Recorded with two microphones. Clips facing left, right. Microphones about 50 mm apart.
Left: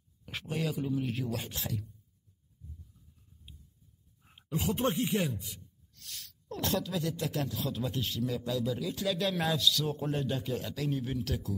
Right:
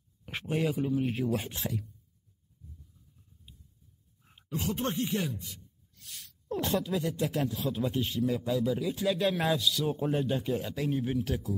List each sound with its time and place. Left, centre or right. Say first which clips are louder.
0.2 s a sound: right 4 dB; right
0.7 s speech: right 3 dB; centre
1.3 s speech: right 4 dB; right
4.2 s speech: left 1 dB; centre
5.9 s speech: left 1 dB; centre